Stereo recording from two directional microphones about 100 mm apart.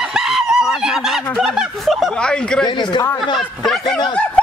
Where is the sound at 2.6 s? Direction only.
50° left (ahead or behind).